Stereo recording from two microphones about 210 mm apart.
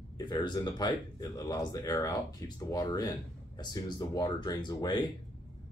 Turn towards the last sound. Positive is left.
turn(degrees=20)  # may be behind; listen again after turning